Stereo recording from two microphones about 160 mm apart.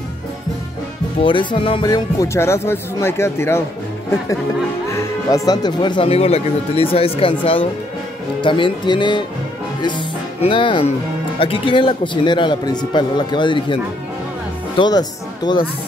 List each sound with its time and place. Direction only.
1.2 s speech: 30° left (ahead or behind)
4.8 s speech: 20° left (ahead or behind)
14.8 s speech: 25° left (ahead or behind)